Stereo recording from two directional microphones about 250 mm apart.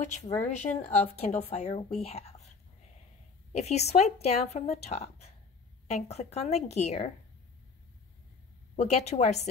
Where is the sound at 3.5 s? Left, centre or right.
Left.